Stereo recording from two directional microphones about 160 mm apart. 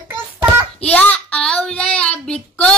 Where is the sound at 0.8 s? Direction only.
10° left (ahead or behind).